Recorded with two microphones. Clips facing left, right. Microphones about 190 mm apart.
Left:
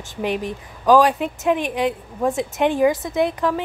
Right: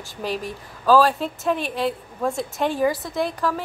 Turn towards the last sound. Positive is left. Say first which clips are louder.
# left 4 dB
turn(degrees=20)  # may be behind; listen again after turning